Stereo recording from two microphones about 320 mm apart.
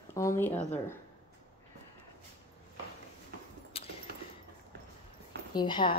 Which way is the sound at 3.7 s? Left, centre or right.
Centre.